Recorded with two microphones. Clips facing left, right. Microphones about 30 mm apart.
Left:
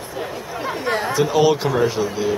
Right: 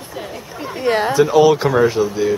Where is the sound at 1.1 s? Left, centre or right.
Centre.